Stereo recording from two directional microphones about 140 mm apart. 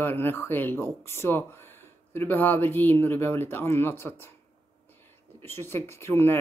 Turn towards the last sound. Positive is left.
turn(degrees=20)  # may be behind; listen again after turning